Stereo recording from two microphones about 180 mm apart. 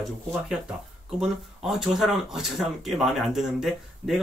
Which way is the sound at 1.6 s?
Centre (ahead or behind).